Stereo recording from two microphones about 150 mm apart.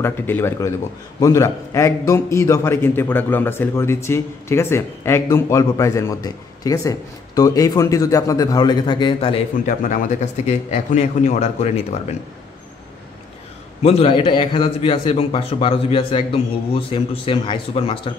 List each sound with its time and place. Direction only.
0.0 s a man's voice: 15° left (ahead or behind); by 9.4 s 35° left (ahead or behind)
9.7 s speech: 55° left (ahead or behind)
13.8 s a man's voice: 40° left (ahead or behind)